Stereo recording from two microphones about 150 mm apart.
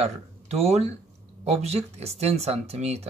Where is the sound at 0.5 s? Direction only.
45° right (ahead or behind).